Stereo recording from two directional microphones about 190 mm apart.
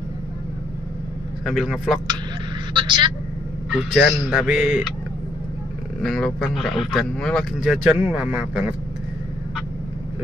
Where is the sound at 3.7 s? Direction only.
5° left (ahead or behind).